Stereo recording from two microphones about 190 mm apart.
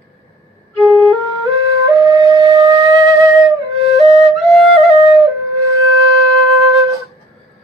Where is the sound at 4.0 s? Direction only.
Centre (ahead or behind).